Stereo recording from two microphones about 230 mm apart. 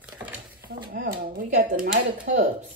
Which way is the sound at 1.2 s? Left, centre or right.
Right.